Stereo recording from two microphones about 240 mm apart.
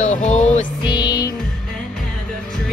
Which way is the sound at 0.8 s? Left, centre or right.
Centre.